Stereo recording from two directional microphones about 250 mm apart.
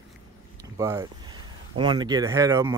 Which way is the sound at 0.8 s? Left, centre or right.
Centre.